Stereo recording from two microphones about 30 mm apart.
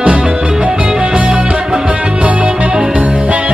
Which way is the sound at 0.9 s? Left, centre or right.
Right.